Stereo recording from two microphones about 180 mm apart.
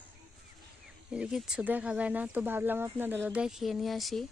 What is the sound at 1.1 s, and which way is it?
Speech, 5° right (ahead or behind).